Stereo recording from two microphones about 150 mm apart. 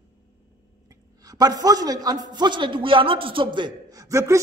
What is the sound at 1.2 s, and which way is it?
A man's voice, 25° right (ahead or behind).